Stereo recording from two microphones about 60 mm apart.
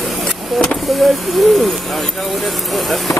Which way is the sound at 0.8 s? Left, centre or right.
Centre.